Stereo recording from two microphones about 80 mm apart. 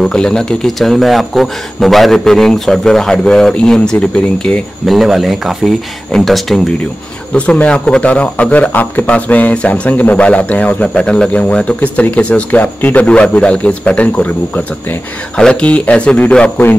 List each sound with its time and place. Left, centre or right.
0.0 s speech: centre
4.8 s speech: centre
7.3 s speech: centre